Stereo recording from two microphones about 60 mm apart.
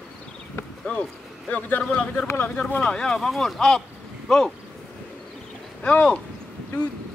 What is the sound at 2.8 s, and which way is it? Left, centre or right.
Cattle, centre.